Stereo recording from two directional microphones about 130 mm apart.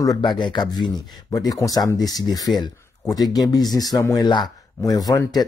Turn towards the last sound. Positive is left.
turn(degrees=30)  # may be behind; listen again after turning